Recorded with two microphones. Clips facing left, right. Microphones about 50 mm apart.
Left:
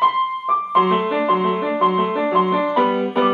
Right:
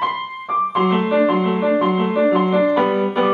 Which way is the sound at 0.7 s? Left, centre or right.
Left.